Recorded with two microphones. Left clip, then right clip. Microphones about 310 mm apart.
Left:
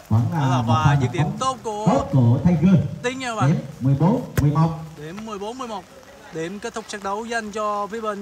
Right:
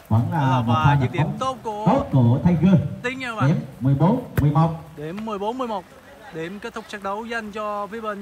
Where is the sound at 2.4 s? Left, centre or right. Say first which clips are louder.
Even; centre.